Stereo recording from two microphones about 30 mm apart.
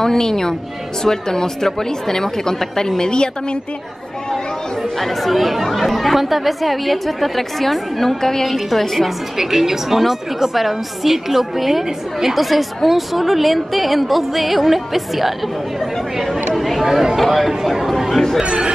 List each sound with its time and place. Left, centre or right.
0.0 s speech: centre
3.0 s speech: left
4.9 s a woman's voice: centre
8.2 s speech: centre
8.5 s a woman's voice: centre
9.4 s a woman's voice: centre
18.4 s speech: right